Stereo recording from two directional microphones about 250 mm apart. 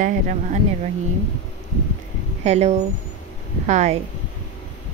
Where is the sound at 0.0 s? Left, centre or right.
Right.